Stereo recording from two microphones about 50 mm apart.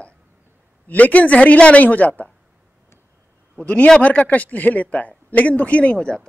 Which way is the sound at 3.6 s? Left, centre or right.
Left.